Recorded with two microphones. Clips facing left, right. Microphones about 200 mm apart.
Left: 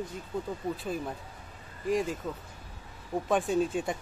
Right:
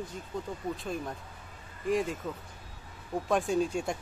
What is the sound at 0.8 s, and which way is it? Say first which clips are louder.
Speech: left 2 dB; 5° left (ahead or behind).